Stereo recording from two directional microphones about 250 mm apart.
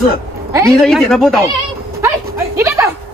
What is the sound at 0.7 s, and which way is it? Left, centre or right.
Speech, centre.